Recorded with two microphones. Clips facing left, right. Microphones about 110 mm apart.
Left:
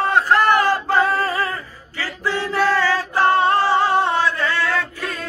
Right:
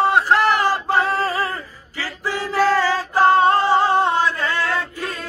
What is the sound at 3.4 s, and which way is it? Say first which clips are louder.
Music: right 1 dB; 15° right (ahead or behind).